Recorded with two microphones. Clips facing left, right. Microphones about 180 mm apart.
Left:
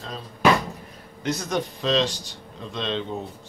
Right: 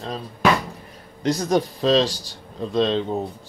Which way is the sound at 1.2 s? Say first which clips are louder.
Right 6 dB; 35° right (ahead or behind).